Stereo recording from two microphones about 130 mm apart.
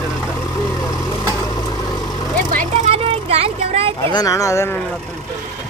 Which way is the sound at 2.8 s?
50° right (ahead or behind).